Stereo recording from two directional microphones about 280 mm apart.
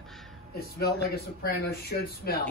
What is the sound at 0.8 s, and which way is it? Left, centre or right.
Speech, left.